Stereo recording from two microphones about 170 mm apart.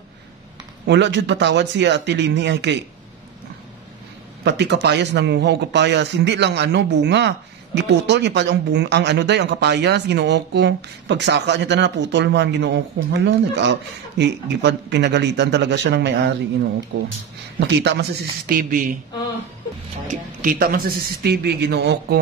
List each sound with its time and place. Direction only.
0.8 s a man's voice: 90° right
4.5 s a man's voice: 85° right
17.6 s speech: 85° right
18.5 s speech: 55° right (ahead or behind)
20.1 s a man's voice: 55° right (ahead or behind); by 22.2 s 80° right